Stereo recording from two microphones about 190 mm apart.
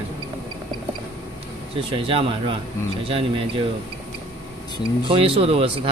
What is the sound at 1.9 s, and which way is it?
Speech, 30° right (ahead or behind).